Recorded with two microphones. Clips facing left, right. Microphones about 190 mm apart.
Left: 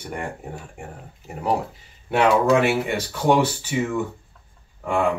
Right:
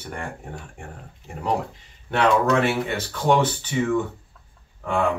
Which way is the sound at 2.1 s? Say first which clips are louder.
Left 2 dB; 10° left (ahead or behind).